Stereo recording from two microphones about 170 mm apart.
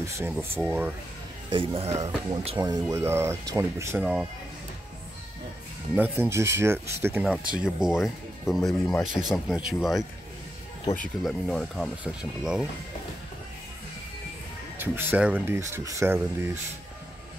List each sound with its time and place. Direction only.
0.0 s speech: 15° right (ahead or behind)
1.5 s speech: 35° right (ahead or behind); by 4.0 s 15° right (ahead or behind)
4.0 s speech: centre (ahead or behind)
5.9 s speech: 10° right (ahead or behind)
11.2 s speech: centre (ahead or behind)
14.8 s speech: 10° right (ahead or behind)